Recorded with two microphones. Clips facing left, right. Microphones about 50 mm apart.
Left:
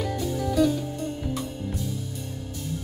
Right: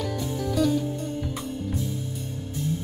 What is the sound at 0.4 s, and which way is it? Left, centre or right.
Music, centre.